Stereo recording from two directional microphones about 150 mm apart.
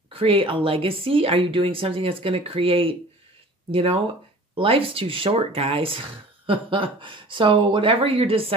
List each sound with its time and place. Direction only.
0.1 s speech: 35° right (ahead or behind)